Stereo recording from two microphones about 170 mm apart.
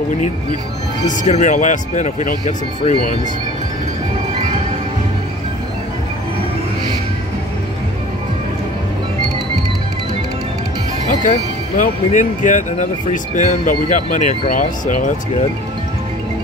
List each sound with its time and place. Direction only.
1.0 s speech: 45° left (ahead or behind)
11.2 s speech: 50° left (ahead or behind)